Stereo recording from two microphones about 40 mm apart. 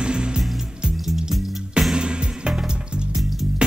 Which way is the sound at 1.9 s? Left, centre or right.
Right.